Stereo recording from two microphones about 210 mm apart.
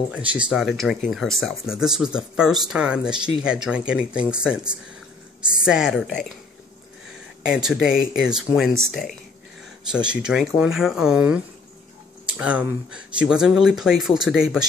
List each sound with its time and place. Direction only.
0.1 s speech: 5° right (ahead or behind)
5.7 s speech: centre (ahead or behind)
7.4 s speech: 5° right (ahead or behind)